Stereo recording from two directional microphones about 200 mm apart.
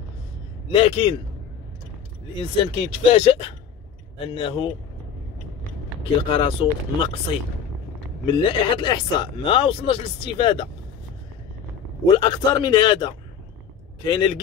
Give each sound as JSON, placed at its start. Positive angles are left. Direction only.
{"t": 0.7, "sound": "speech", "side_deg": 30}
{"t": 2.3, "sound": "speech", "side_deg": 30}
{"t": 6.2, "sound": "speech", "side_deg": 25}
{"t": 12.1, "sound": "speech", "side_deg": 20}